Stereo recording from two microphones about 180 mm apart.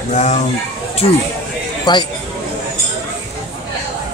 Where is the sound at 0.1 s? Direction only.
40° left (ahead or behind).